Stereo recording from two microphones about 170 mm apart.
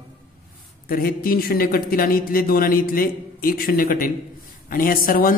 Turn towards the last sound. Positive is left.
turn(degrees=55)  # may be behind; listen again after turning